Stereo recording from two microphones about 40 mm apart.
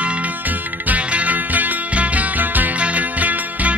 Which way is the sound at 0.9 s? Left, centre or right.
Right.